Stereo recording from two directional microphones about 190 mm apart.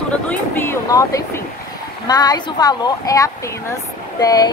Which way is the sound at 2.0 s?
20° left (ahead or behind).